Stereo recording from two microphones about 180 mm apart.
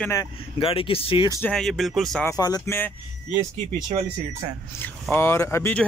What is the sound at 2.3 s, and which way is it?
Speech, 20° left (ahead or behind).